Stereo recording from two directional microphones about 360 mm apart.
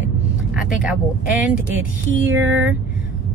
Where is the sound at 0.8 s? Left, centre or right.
Centre.